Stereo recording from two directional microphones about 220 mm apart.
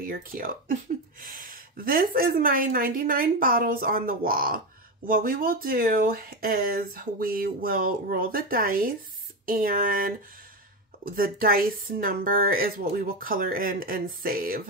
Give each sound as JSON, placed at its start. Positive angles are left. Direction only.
{"t": 0.0, "sound": "speech", "side_deg": -40}